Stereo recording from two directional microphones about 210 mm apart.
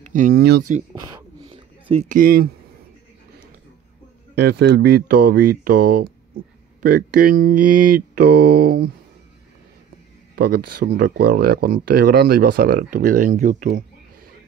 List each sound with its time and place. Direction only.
0.0 s speech: 35° right (ahead or behind)
0.9 s a sound: 20° right (ahead or behind); by 2.5 s 45° right (ahead or behind)
4.4 s speech: 50° right (ahead or behind)
8.2 s speech: 90° right
8.5 s speech: 45° right (ahead or behind)
10.3 s speech: 45° right (ahead or behind)